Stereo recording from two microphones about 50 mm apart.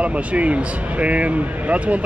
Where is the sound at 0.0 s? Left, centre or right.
Right.